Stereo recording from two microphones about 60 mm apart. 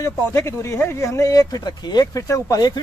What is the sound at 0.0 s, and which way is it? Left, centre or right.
Speech, left.